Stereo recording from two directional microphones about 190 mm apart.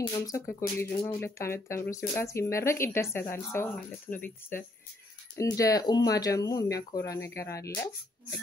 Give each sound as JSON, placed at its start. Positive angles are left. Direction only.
{"t": 0.5, "sound": "speech", "side_deg": 15}